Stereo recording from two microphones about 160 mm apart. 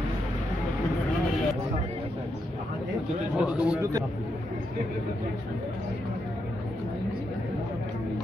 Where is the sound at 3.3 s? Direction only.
5° right (ahead or behind).